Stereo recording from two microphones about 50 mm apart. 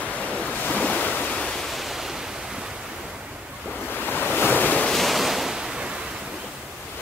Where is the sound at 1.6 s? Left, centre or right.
Centre.